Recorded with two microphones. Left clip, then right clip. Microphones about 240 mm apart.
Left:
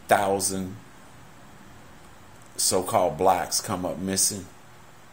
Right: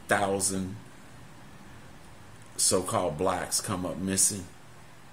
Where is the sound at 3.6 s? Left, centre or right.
Centre.